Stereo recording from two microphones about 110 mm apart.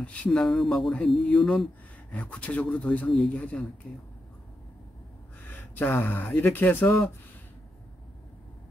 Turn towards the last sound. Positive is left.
turn(degrees=20)  # may be behind; listen again after turning